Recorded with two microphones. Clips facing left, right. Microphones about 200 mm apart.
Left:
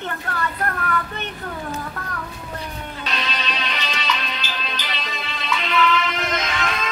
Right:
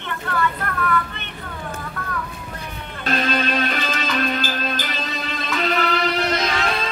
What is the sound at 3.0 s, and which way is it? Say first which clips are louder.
Music: right 8 dB; 45° right (ahead or behind).